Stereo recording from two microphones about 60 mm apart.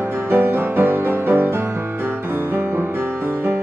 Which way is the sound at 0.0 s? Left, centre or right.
Right.